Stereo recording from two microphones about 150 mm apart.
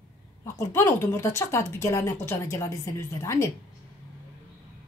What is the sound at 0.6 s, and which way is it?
Speech, 15° left (ahead or behind).